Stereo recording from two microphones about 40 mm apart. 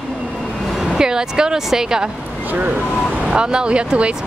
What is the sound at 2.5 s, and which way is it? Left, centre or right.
Speech, right.